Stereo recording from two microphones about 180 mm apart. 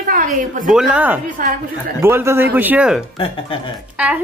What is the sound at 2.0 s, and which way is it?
Speech, 15° right (ahead or behind).